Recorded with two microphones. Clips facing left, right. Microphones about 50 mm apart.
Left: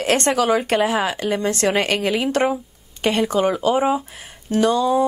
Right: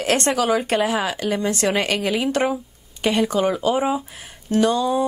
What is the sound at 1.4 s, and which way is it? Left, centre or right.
Speech, left.